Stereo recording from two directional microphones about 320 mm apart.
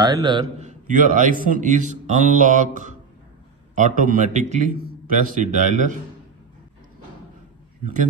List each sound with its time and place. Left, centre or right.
0.0 s a man's voice: centre